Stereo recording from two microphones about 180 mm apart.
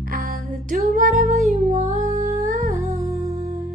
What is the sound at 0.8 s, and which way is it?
Music, 40° right (ahead or behind).